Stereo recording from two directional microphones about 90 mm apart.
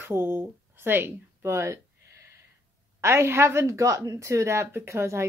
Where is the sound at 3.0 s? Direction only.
30° right (ahead or behind).